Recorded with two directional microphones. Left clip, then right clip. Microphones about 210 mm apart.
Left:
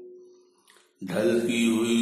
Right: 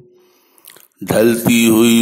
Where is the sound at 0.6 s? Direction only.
40° right (ahead or behind).